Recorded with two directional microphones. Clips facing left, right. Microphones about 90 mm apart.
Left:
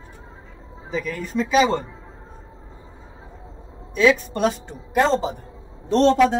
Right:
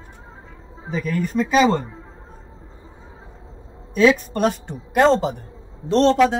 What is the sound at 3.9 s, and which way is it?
A woman's voice, 45° right (ahead or behind).